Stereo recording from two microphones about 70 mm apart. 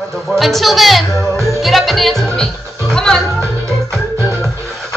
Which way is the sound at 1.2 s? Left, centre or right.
Right.